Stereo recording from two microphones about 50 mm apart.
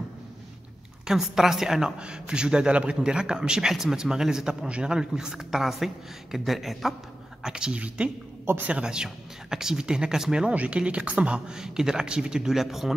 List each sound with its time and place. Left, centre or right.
1.0 s a woman's voice: centre
7.4 s a woman's voice: centre
8.5 s a woman's voice: right
8.8 s a woman's voice: centre
10.5 s a woman's voice: right
12.5 s speech: centre